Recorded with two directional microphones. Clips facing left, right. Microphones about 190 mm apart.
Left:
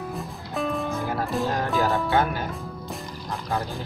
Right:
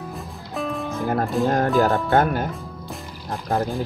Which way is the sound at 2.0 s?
55° right (ahead or behind).